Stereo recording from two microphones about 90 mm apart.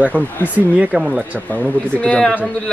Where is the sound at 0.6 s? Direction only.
15° right (ahead or behind).